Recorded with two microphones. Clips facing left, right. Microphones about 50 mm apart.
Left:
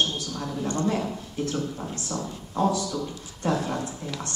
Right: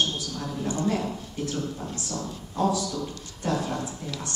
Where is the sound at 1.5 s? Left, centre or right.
Centre.